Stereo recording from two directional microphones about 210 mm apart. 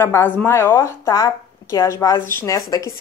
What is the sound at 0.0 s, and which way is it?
Speech, 10° left (ahead or behind).